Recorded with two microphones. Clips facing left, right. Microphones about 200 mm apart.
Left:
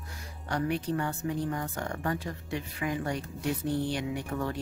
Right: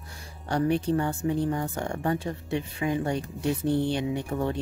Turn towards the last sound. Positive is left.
turn(degrees=-25)  # may be behind; listen again after turning